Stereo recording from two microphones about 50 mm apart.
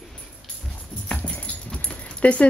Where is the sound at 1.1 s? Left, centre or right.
Left.